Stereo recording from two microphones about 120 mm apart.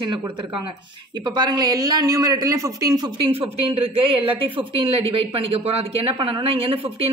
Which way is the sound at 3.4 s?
55° right (ahead or behind).